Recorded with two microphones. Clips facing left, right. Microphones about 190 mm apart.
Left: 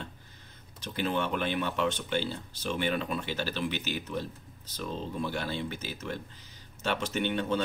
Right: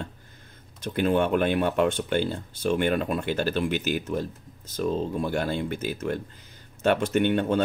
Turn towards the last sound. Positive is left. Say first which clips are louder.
# right 7 dB
turn(degrees=-50)  # may be behind; listen again after turning